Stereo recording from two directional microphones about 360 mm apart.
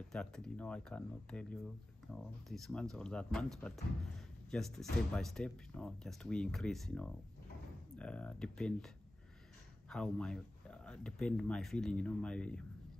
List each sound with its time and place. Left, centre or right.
0.1 s speech: centre